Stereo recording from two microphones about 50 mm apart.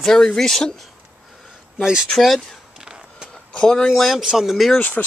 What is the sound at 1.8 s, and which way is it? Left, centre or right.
Speech, centre.